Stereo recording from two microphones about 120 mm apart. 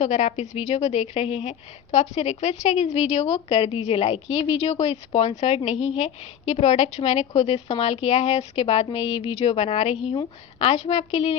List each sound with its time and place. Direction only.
0.0 s a woman's voice: 70° left (ahead or behind)